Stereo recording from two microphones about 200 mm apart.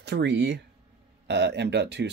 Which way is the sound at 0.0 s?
60° right (ahead or behind).